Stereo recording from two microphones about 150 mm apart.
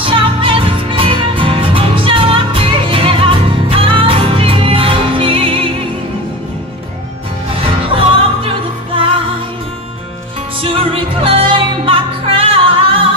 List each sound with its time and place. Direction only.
0.0 s music: 35° right (ahead or behind)
7.5 s music: 40° right (ahead or behind)
10.6 s music: 40° right (ahead or behind)